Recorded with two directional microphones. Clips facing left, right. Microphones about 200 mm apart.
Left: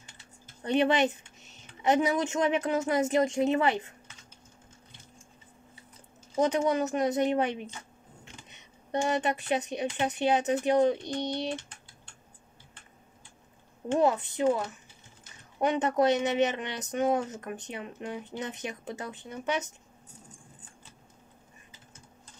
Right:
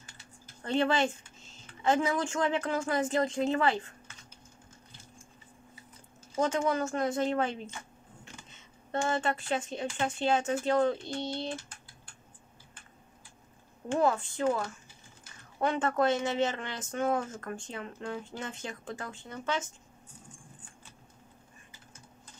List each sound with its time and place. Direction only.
0.6 s speech: 20° left (ahead or behind)
6.3 s speech: 20° left (ahead or behind)
11.5 s typing: 25° left (ahead or behind)
13.8 s speech: 20° left (ahead or behind)